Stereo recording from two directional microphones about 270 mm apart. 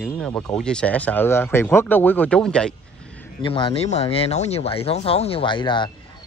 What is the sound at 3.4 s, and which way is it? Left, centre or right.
Speech, centre.